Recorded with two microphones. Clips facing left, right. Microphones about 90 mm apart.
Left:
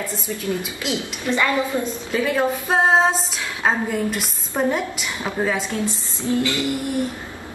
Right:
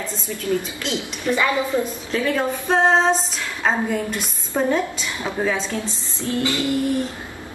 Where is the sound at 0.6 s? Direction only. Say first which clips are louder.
Even; 10° left (ahead or behind).